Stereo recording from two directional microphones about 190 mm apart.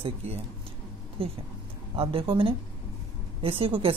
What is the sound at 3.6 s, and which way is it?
Speech, 30° right (ahead or behind).